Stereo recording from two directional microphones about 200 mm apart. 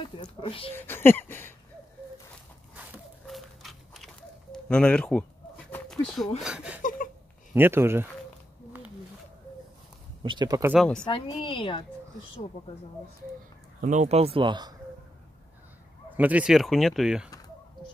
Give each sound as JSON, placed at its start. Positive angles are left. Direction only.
{"t": 0.2, "sound": "a woman's voice", "side_deg": 25}
{"t": 0.7, "sound": "speech", "side_deg": 10}
{"t": 2.7, "sound": "a sound", "side_deg": -5}
{"t": 6.4, "sound": "speech", "side_deg": -5}
{"t": 6.8, "sound": "a sound", "side_deg": 40}
{"t": 7.5, "sound": "speech", "side_deg": -10}
{"t": 10.2, "sound": "speech", "side_deg": -20}
{"t": 10.7, "sound": "speech", "side_deg": 0}
{"t": 11.1, "sound": "a woman's voice", "side_deg": 25}
{"t": 13.7, "sound": "speech", "side_deg": -40}
{"t": 16.1, "sound": "speech", "side_deg": -10}